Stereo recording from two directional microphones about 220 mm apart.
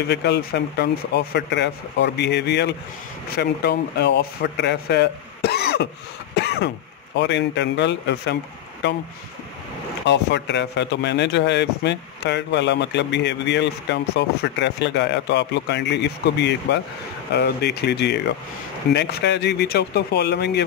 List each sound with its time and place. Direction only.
0.1 s speech: 50° left (ahead or behind)
6.3 s throat clearing: 50° left (ahead or behind)
7.2 s speech: 55° left (ahead or behind)
10.0 s speech: 50° left (ahead or behind)